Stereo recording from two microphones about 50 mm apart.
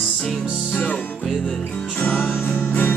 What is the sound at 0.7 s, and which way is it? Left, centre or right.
Music, left.